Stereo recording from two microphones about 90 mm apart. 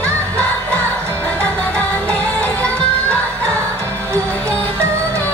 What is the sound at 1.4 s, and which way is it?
Music, 15° left (ahead or behind).